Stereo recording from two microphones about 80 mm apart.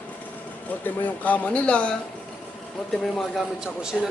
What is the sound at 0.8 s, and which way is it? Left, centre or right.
A man's voice, left.